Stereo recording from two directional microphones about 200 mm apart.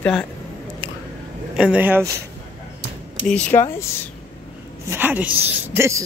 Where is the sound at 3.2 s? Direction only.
5° left (ahead or behind).